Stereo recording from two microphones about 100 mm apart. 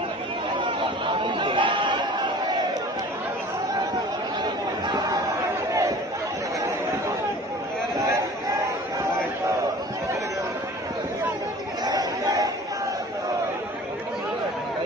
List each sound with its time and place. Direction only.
0.6 s chatter: 50° right (ahead or behind)
5.7 s chatter: 35° right (ahead or behind)
11.8 s chatter: 40° right (ahead or behind)